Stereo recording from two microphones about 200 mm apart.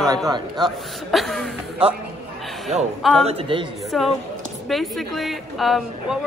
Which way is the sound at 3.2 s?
25° right (ahead or behind).